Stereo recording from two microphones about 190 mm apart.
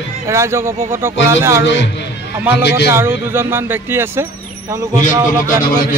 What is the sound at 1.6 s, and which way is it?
Speech, 70° left (ahead or behind).